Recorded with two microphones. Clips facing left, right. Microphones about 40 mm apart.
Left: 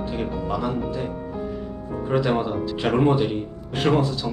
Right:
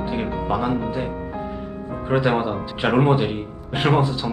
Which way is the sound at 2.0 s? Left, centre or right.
Right.